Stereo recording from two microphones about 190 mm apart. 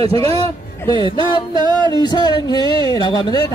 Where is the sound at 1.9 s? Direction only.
20° left (ahead or behind).